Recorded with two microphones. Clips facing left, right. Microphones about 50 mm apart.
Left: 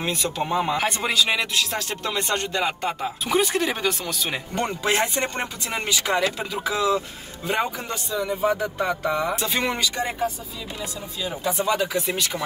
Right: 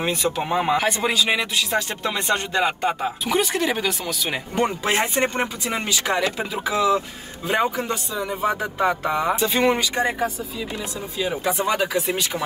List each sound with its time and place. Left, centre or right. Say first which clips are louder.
0.0 s speech: right 3 dB; centre
3.3 s speech: even; centre
4.6 s speech: right 2 dB; centre
9.3 s speech: right 4 dB; centre
9.6 s speech: right 6 dB; right
11.6 s speech: even; right
12.1 s speech: right 2 dB; right